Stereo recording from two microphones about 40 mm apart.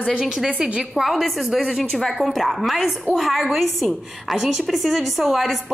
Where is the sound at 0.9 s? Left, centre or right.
Centre.